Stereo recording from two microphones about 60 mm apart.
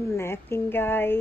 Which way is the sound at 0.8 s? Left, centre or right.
Left.